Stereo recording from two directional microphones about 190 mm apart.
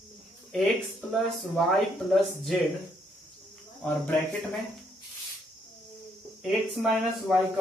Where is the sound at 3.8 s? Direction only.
10° left (ahead or behind).